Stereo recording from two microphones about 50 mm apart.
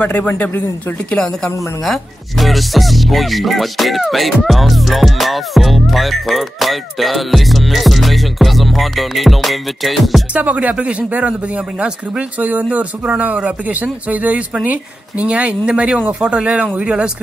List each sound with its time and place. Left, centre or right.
0.0 s speech: left
1.1 s a woman's voice: centre
1.9 s speech: centre
10.3 s speech: right